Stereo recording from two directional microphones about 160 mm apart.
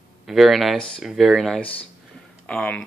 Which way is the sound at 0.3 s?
Centre (ahead or behind).